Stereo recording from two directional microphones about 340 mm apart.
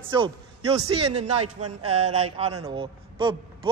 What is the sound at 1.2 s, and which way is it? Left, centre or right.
Speech, right.